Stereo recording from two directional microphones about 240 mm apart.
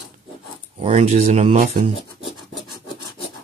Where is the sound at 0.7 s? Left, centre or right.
Right.